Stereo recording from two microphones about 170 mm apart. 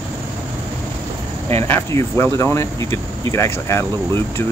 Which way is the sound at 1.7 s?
15° left (ahead or behind).